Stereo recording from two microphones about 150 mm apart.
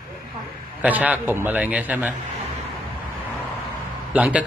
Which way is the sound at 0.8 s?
10° right (ahead or behind).